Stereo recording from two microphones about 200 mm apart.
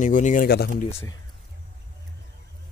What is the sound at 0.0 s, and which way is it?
Speech, 40° left (ahead or behind).